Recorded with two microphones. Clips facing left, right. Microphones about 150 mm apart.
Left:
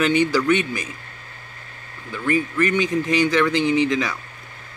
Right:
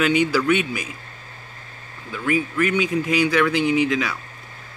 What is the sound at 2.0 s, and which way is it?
Speech, 5° right (ahead or behind).